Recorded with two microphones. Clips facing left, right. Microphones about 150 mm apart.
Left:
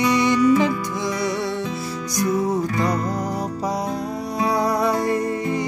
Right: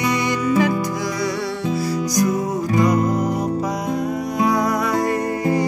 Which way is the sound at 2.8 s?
30° left (ahead or behind).